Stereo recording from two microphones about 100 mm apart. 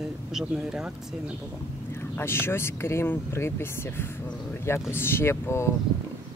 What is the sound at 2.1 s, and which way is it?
Speech, 25° left (ahead or behind).